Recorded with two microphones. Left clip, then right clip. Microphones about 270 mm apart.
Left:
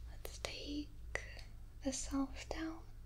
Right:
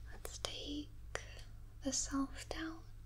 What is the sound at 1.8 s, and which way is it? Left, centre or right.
Speech, centre.